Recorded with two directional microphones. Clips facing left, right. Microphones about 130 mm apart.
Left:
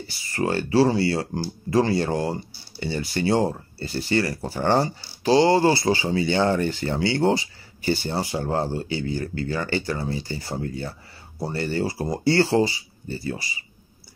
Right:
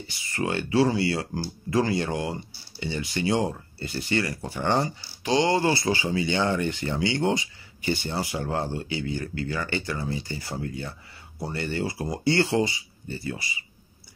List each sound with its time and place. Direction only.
0.0 s speech: 35° left (ahead or behind)